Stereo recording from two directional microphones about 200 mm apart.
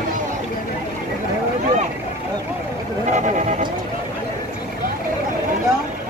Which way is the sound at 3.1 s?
35° right (ahead or behind).